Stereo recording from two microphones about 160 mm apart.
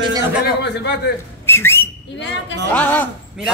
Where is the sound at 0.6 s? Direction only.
90° left.